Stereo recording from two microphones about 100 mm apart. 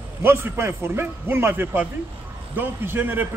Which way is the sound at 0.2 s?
25° right (ahead or behind).